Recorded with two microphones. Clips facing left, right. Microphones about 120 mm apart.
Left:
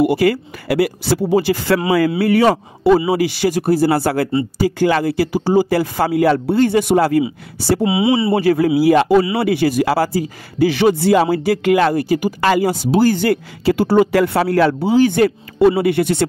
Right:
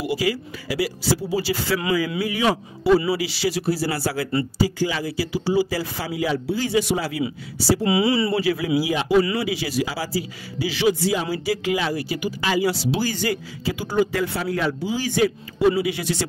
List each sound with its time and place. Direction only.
0.0 s speech: 60° left (ahead or behind)
7.8 s speech: 20° left (ahead or behind)
8.4 s speech: 50° left (ahead or behind)